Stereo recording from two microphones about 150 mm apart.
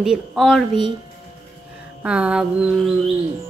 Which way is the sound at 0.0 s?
5° right (ahead or behind).